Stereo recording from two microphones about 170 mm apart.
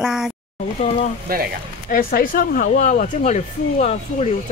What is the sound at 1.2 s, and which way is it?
Speech, 60° right (ahead or behind).